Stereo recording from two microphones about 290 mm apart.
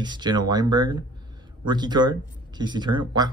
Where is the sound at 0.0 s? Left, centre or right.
Centre.